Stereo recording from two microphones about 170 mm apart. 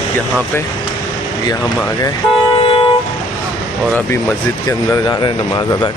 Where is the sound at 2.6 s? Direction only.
30° left (ahead or behind).